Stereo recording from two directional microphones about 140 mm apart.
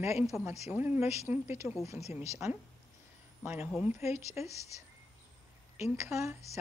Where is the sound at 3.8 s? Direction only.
15° right (ahead or behind).